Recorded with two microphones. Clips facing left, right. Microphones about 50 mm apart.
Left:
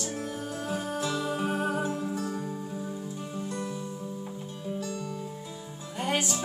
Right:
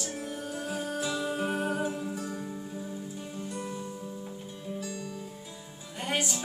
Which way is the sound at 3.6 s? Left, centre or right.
Centre.